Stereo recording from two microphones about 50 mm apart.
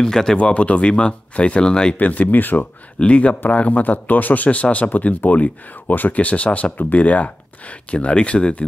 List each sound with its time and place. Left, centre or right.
0.0 s speech: centre
0.4 s speech: left
2.0 s a man's voice: left
3.0 s a man's voice: left